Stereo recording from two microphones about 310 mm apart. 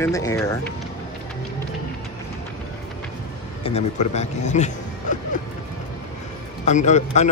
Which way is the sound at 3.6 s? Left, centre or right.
Left.